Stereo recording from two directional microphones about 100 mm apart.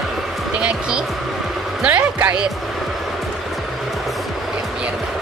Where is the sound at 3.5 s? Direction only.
Centre (ahead or behind).